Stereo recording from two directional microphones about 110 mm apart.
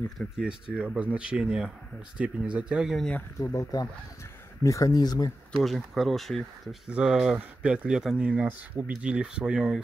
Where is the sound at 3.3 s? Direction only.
30° left (ahead or behind).